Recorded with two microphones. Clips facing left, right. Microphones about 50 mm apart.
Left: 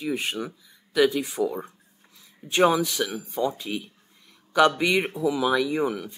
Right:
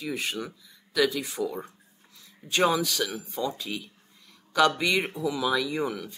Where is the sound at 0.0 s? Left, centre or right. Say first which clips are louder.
Left 3 dB; left.